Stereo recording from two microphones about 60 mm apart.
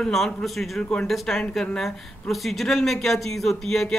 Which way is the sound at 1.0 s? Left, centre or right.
Centre.